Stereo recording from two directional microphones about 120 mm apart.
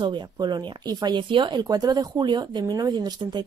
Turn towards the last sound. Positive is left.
turn(degrees=-35)  # may be behind; listen again after turning